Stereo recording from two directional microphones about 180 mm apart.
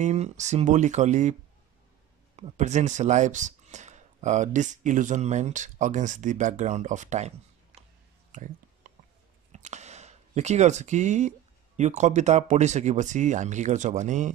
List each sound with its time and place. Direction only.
0.0 s speech: 40° right (ahead or behind)
2.3 s speech: 40° right (ahead or behind)
8.3 s a sound: 45° right (ahead or behind)
9.5 s speech: 40° right (ahead or behind)